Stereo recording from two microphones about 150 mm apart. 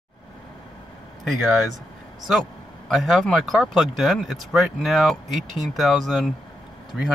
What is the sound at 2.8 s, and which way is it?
Speech, centre (ahead or behind).